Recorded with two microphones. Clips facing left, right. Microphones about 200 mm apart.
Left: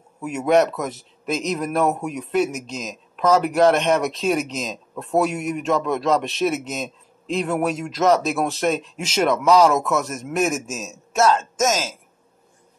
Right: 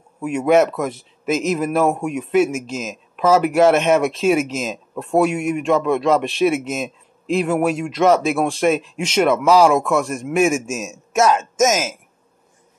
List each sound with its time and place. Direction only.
0.4 s speech: centre (ahead or behind)
9.8 s speech: 5° left (ahead or behind)
10.7 s speech: 15° right (ahead or behind)